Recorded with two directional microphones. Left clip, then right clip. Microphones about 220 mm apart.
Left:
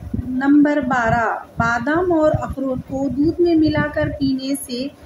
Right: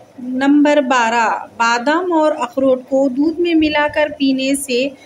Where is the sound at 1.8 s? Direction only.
25° right (ahead or behind).